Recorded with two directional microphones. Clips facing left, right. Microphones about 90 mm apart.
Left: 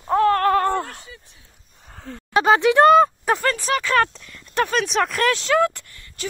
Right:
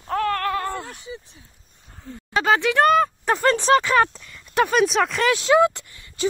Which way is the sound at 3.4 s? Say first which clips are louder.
Right 5 dB; 25° right (ahead or behind).